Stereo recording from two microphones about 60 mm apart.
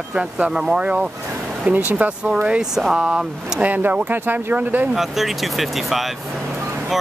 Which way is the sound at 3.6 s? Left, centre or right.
Right.